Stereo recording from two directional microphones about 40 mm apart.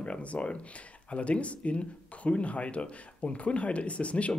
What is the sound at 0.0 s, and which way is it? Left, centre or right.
Speech, left.